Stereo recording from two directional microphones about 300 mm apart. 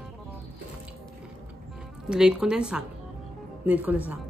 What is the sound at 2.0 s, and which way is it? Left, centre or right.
Speech, centre.